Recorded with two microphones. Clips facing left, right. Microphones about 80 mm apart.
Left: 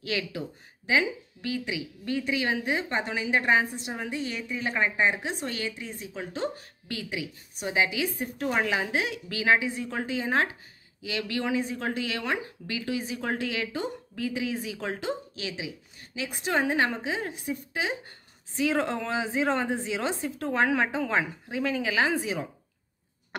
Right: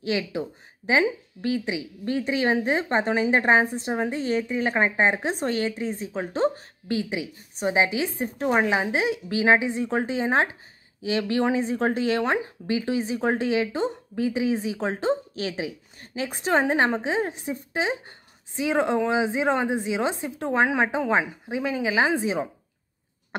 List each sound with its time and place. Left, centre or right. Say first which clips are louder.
0.0 s speech: right 5 dB; right